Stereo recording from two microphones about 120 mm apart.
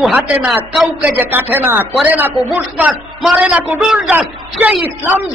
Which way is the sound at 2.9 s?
5° right (ahead or behind).